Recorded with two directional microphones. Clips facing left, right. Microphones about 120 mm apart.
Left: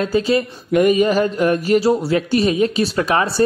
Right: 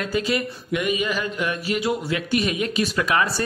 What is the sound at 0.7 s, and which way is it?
Speech, 45° left (ahead or behind).